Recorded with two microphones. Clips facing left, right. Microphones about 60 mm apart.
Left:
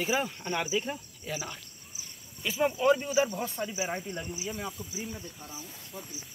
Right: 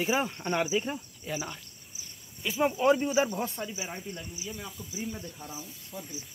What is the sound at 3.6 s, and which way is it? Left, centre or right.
Speech, centre.